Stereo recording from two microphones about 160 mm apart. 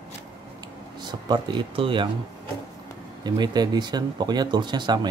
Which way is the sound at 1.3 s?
30° right (ahead or behind).